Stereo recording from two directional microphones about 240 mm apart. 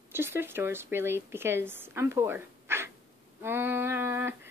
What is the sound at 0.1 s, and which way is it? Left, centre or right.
A woman's voice, centre.